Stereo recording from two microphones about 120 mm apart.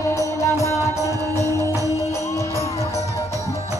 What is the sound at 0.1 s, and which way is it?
Music, 25° left (ahead or behind).